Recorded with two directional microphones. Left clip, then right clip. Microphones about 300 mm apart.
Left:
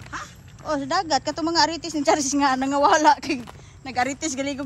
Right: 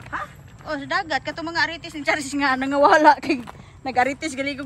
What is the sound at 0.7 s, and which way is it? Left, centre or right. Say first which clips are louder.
A woman's voice: left 2 dB; centre.